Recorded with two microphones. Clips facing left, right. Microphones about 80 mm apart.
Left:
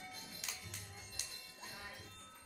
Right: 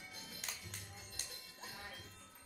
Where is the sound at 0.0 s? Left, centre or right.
Left.